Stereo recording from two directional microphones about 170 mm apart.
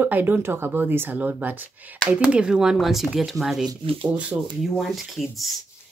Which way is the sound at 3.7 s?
30° right (ahead or behind).